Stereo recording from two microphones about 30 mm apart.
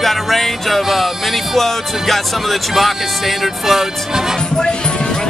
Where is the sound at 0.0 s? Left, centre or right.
Centre.